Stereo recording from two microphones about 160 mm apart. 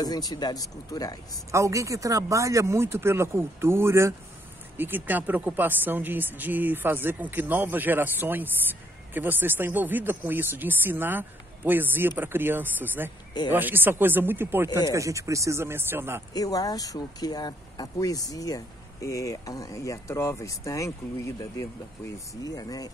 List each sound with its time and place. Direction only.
0.0 s speech: 25° left (ahead or behind)
1.5 s speech: 20° right (ahead or behind)
16.3 s speech: 20° left (ahead or behind)